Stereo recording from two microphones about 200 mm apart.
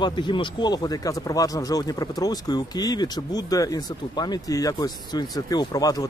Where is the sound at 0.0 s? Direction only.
20° left (ahead or behind).